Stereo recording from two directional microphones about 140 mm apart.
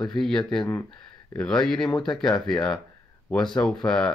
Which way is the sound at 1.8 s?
30° left (ahead or behind).